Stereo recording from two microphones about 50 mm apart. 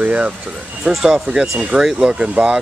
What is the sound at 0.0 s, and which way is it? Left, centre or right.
Speech, right.